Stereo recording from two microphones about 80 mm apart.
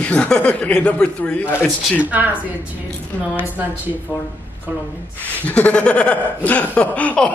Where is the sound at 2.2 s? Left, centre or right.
Right.